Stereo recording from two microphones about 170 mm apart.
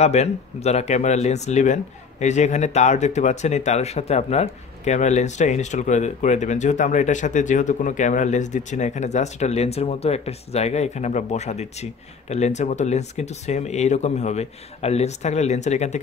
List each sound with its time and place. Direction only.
0.0 s speech: 40° left (ahead or behind)